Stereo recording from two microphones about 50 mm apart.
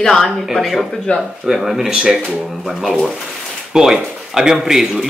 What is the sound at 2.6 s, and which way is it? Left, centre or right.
Speech, centre.